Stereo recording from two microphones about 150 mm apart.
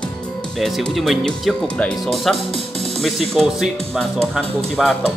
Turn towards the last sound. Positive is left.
turn(degrees=5)  # may be behind; listen again after turning